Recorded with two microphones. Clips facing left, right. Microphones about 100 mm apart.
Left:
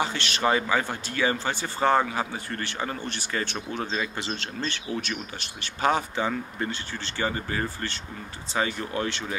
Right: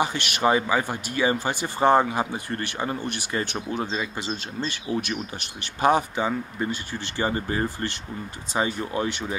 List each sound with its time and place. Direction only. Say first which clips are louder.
0.0 s speech: right 3 dB; 15° right (ahead or behind)
7.2 s speech: right 3 dB; 30° right (ahead or behind)